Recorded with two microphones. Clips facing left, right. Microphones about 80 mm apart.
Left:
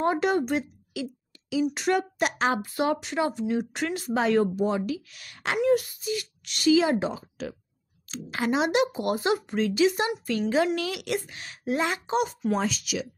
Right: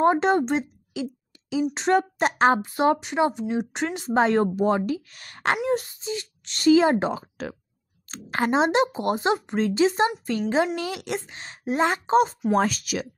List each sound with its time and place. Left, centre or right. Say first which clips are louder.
0.0 s a woman's voice: right 4 dB; right
2.6 s speech: right 5 dB; right
4.1 s a woman's voice: right 3 dB; right
4.6 s speech: right 4 dB; right
5.7 s a woman's voice: left 2 dB; right
7.1 s speech: right 4 dB; right
8.1 s speech: right 3 dB; right
8.5 s a woman's voice: right 3 dB; right
12.5 s speech: right 8 dB; right